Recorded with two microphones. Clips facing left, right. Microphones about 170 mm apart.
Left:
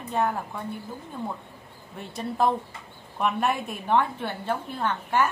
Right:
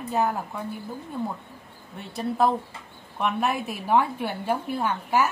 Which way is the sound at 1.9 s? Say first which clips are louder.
Right 2 dB; centre (ahead or behind).